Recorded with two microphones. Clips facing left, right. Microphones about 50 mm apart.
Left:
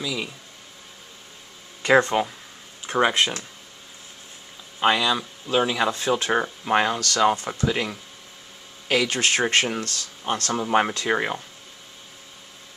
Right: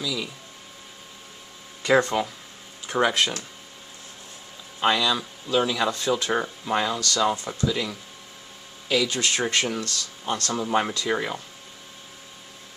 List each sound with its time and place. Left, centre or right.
0.0 s a sound: left
1.8 s speech: left
2.9 s speech: centre
4.7 s speech: centre